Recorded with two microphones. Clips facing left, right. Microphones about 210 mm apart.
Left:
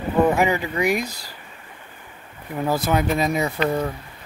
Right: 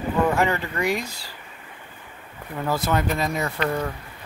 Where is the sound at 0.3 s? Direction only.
15° left (ahead or behind).